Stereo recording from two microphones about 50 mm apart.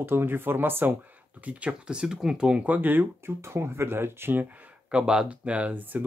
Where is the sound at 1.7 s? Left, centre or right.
Centre.